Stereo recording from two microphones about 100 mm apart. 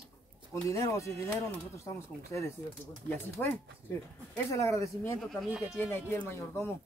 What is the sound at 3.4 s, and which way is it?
Speech, 20° left (ahead or behind).